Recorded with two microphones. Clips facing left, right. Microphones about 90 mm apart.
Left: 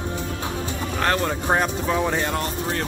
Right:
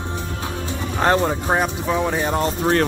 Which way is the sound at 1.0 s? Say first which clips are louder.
Right 5 dB; 20° right (ahead or behind).